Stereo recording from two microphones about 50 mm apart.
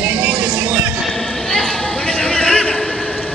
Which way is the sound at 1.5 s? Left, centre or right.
Centre.